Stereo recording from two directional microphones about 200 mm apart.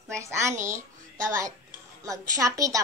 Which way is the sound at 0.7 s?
15° right (ahead or behind).